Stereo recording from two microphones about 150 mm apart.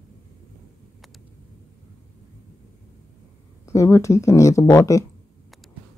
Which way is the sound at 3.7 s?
20° left (ahead or behind).